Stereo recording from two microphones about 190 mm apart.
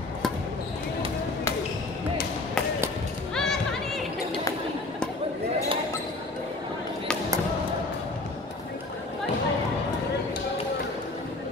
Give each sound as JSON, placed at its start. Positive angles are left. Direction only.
{"t": 3.3, "sound": "music", "side_deg": 0}